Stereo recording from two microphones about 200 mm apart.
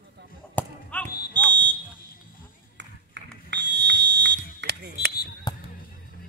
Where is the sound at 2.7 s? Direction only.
60° right (ahead or behind).